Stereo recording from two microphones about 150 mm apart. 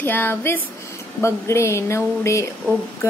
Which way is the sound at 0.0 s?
15° left (ahead or behind).